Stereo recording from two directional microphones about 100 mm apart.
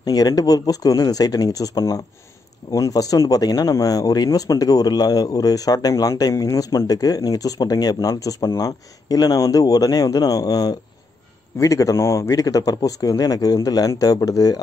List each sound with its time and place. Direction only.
0.0 s speech: 40° left (ahead or behind)